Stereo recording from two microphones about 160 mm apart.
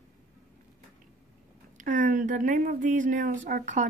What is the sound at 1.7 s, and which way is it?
Speech, 50° right (ahead or behind).